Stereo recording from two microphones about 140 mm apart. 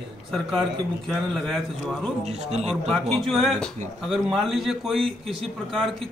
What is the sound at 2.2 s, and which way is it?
Speech, 50° right (ahead or behind).